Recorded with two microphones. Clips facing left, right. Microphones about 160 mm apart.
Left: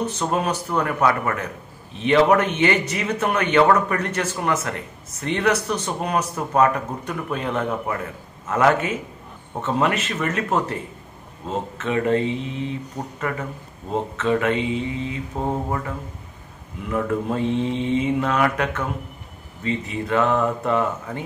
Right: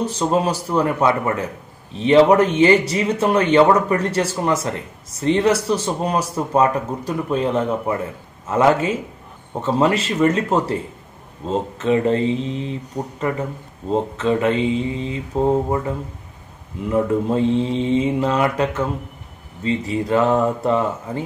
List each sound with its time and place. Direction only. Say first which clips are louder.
0.3 s speech: right 5 dB; 30° right (ahead or behind)
16.9 s speech: right 5 dB; 30° right (ahead or behind)